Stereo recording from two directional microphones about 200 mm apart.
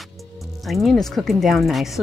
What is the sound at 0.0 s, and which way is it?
Music, centre (ahead or behind).